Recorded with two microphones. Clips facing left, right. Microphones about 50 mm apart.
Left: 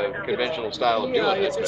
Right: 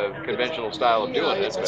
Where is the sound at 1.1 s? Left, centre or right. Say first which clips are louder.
Left 2 dB; centre.